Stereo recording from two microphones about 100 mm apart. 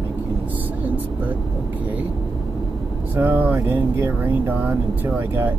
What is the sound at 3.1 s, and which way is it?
Speech, 20° right (ahead or behind).